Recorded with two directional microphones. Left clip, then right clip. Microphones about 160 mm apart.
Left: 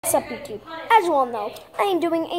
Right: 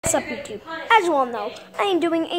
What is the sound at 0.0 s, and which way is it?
A woman's voice, centre (ahead or behind).